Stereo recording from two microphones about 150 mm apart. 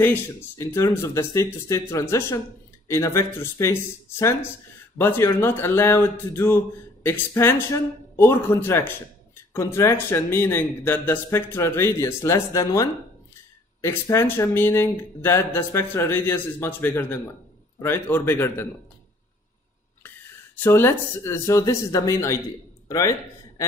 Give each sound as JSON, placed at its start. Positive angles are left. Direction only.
{"t": 0.0, "sound": "speech", "side_deg": 15}
{"t": 20.5, "sound": "speech", "side_deg": 15}